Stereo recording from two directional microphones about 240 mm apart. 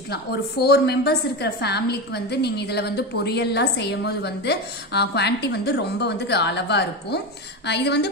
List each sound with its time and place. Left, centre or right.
0.1 s a woman's voice: left